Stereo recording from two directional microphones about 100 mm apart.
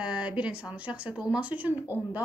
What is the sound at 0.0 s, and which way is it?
A woman's voice, 10° right (ahead or behind).